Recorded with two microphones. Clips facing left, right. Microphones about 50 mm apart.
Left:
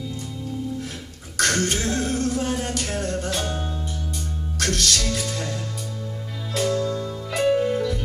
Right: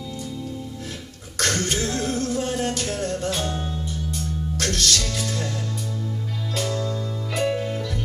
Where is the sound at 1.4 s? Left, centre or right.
Left.